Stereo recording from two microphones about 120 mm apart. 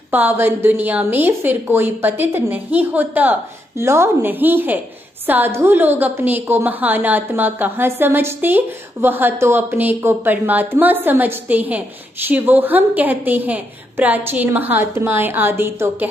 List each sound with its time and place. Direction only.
0.1 s a woman's voice: 15° right (ahead or behind)